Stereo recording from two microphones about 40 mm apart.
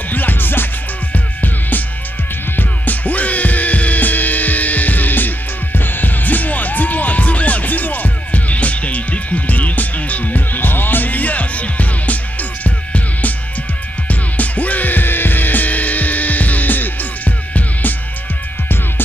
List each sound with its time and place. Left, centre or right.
0.1 s music: left